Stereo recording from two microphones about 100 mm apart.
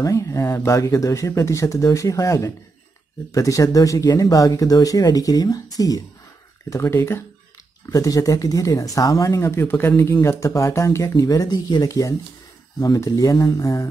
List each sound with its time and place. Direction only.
0.0 s speech: 35° left (ahead or behind)